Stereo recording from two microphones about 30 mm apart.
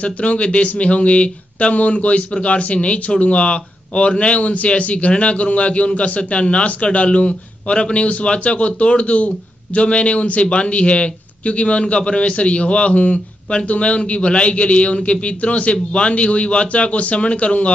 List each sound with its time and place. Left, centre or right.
0.0 s a man's voice: left